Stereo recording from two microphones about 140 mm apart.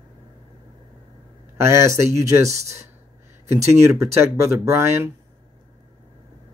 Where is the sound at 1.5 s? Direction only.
20° right (ahead or behind).